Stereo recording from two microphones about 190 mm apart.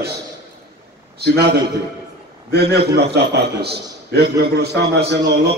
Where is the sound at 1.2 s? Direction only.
60° right (ahead or behind).